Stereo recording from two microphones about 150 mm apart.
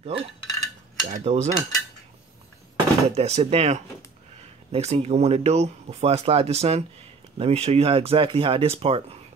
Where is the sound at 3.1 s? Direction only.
45° right (ahead or behind).